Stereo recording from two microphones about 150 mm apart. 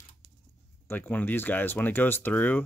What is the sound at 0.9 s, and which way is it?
Speech, 10° left (ahead or behind).